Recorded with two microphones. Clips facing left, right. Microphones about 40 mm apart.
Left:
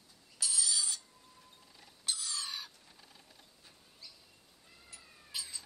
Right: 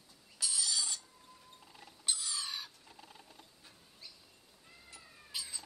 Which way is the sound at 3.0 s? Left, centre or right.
Right.